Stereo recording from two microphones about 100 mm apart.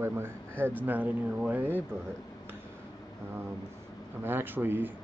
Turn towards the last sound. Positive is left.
turn(degrees=-20)  # may be behind; listen again after turning